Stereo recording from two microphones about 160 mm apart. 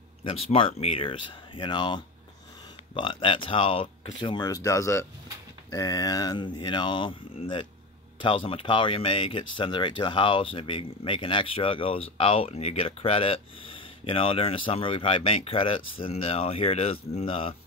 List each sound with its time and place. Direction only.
0.2 s speech: 35° left (ahead or behind)